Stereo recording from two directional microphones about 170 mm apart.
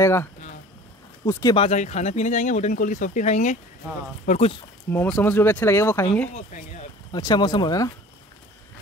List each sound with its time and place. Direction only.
0.0 s speech: 15° left (ahead or behind)
1.5 s speech: 40° left (ahead or behind)
4.8 s speech: 10° left (ahead or behind)
7.1 s speech: 25° left (ahead or behind)